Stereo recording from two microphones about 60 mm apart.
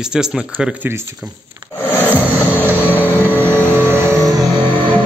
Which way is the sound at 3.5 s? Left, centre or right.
Right.